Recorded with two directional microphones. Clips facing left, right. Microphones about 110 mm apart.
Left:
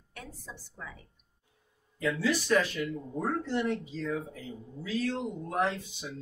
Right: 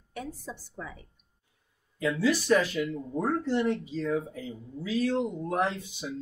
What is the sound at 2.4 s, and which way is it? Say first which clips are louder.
Speech: right 3 dB; 15° right (ahead or behind).